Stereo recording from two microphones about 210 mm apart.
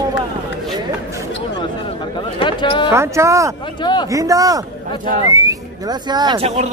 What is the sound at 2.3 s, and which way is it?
Speech, 25° left (ahead or behind).